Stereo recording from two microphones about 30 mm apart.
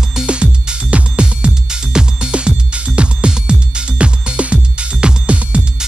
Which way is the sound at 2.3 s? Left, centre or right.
Right.